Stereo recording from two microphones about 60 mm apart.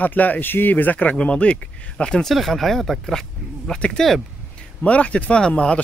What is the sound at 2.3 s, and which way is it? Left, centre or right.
Speech, centre.